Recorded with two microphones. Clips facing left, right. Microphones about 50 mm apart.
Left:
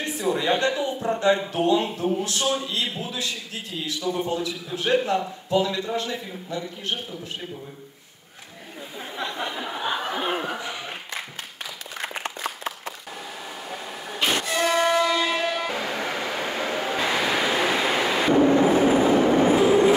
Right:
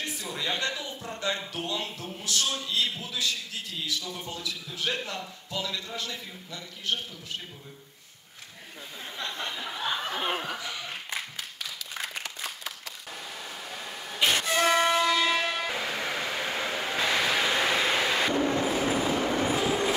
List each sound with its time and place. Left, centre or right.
0.0 s a man's voice: left
2.4 s a man's voice: centre
9.1 s a sound: centre; by 12.9 s left
13.7 s vehicle: centre
14.6 s train: centre
18.3 s vehicle: left